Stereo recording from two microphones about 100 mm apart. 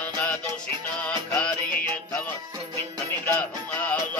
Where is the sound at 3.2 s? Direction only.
15° left (ahead or behind).